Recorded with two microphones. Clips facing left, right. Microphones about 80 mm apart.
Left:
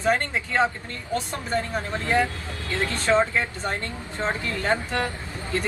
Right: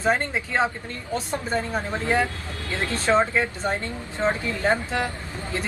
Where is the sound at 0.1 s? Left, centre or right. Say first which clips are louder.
Left 2 dB; centre.